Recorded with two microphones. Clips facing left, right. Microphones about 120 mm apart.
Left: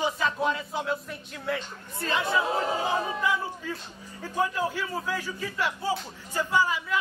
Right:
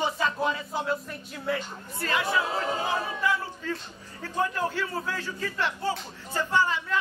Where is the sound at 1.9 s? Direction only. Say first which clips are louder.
Even; 25° left (ahead or behind).